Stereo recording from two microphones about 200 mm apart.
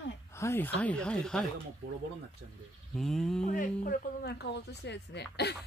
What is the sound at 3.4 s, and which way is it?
Music, 40° left (ahead or behind).